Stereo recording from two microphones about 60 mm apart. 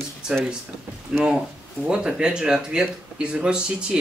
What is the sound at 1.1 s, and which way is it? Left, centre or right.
Speech, centre.